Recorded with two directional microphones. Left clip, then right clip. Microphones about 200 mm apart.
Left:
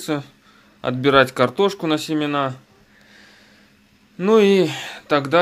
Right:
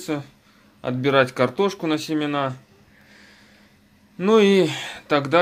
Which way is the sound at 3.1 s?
10° left (ahead or behind).